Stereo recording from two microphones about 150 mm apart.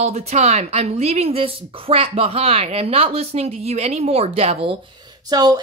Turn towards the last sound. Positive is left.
turn(degrees=-25)  # may be behind; listen again after turning